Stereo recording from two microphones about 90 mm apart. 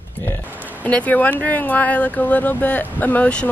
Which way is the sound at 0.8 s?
15° left (ahead or behind).